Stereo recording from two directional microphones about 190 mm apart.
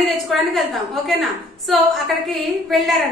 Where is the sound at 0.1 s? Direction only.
Centre (ahead or behind).